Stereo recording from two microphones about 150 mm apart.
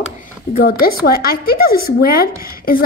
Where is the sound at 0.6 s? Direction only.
85° left.